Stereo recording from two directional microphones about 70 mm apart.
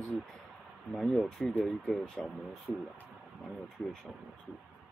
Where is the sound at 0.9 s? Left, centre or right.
Centre.